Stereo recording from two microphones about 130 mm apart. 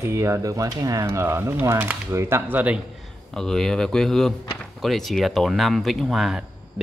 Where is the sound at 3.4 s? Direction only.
5° left (ahead or behind).